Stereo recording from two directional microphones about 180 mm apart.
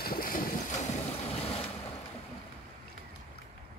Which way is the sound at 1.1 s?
35° left (ahead or behind).